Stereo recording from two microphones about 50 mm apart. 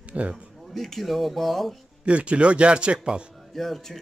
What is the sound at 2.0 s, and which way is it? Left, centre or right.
Speech, right.